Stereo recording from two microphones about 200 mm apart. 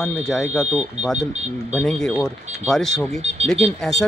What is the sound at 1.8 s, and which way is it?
Speech, centre (ahead or behind).